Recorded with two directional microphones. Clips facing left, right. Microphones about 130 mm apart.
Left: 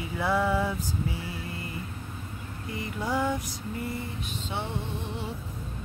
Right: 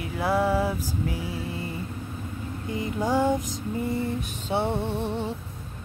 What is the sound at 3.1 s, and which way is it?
Music, 25° right (ahead or behind).